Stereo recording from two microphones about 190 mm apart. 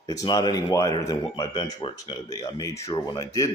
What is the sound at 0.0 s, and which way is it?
A man's voice, 20° left (ahead or behind).